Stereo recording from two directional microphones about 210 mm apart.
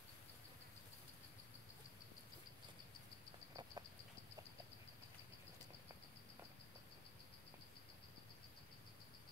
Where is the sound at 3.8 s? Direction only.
20° right (ahead or behind).